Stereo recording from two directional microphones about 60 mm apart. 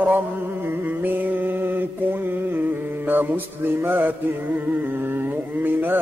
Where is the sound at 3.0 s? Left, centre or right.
Right.